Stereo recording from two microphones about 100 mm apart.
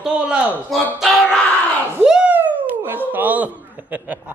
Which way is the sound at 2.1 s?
15° right (ahead or behind).